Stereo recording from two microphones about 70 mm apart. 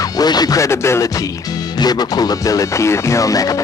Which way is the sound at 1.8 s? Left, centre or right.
Left.